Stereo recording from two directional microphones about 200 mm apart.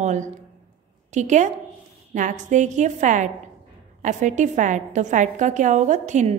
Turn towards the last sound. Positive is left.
turn(degrees=-35)  # may be behind; listen again after turning